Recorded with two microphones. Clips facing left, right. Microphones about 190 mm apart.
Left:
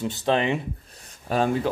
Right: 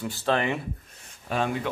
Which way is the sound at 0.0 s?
20° left (ahead or behind).